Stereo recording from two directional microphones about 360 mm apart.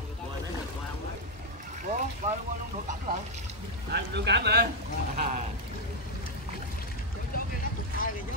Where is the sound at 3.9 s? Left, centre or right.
Right.